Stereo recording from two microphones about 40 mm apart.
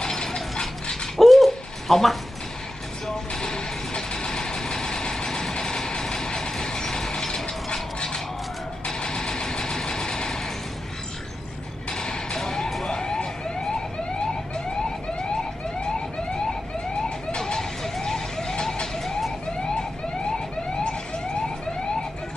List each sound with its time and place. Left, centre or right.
0.0 s ratchet: centre
1.1 s a sound: centre
3.3 s vehicle: centre
11.9 s a sound: left
12.8 s emergency vehicle: centre
15.8 s emergency vehicle: left